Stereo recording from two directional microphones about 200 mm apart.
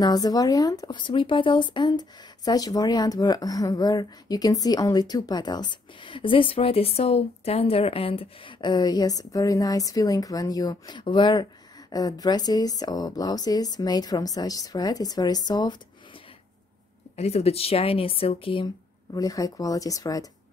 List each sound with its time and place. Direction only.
0.0 s speech: 20° left (ahead or behind)
17.2 s speech: 30° left (ahead or behind)